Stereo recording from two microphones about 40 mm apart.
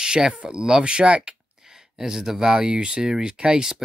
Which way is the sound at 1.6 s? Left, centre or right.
Centre.